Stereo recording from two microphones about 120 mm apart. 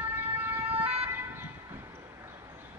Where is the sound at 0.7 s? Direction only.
15° right (ahead or behind).